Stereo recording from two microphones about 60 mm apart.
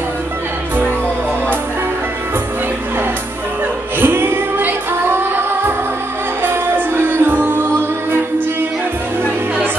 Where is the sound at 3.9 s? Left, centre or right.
Right.